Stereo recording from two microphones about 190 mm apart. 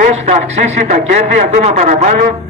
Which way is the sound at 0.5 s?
40° right (ahead or behind).